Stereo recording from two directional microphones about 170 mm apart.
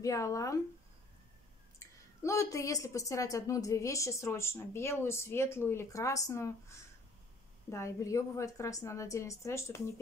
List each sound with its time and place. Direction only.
0.0 s speech: 20° left (ahead or behind)
2.2 s a woman's voice: 20° left (ahead or behind)
7.7 s a woman's voice: 15° left (ahead or behind)